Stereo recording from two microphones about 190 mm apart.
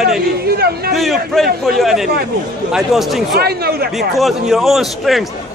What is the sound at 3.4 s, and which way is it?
Speech, 55° right (ahead or behind).